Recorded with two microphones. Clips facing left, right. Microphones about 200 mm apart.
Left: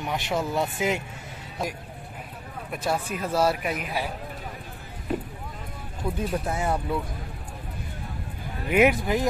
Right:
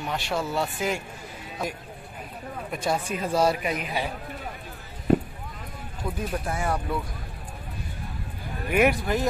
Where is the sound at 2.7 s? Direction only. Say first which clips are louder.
Even; 5° left (ahead or behind).